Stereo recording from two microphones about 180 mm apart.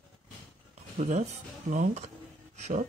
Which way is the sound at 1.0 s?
40° right (ahead or behind).